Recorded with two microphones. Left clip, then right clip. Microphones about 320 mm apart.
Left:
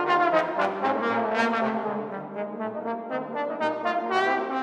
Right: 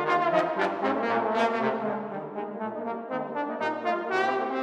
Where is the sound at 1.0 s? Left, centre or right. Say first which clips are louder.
Left 1 dB; left.